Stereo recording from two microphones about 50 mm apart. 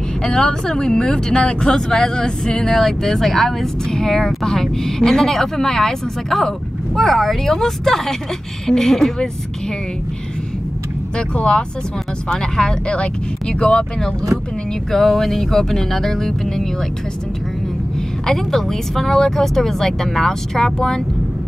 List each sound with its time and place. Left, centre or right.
0.2 s speech: centre
11.1 s speech: centre
14.9 s speech: centre
18.2 s speech: centre